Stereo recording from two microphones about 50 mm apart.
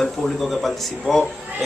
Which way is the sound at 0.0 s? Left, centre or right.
Centre.